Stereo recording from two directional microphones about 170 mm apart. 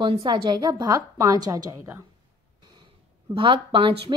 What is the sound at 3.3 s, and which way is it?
Speech, 30° right (ahead or behind).